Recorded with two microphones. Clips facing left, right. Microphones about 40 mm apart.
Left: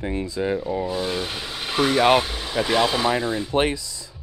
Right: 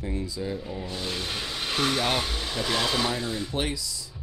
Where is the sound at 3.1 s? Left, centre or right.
Left.